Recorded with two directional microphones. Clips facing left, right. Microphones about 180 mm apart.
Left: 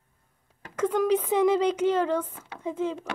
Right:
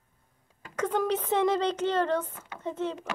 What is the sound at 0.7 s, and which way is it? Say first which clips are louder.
Speech: left 4 dB; 5° left (ahead or behind).